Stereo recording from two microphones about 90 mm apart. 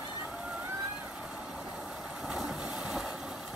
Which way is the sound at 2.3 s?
10° right (ahead or behind).